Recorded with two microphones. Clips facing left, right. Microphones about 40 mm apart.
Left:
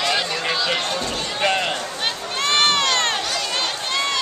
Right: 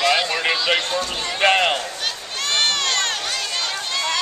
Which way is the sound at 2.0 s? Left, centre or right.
Left.